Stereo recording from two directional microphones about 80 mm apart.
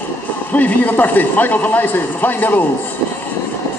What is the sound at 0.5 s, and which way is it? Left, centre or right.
A man's voice, centre.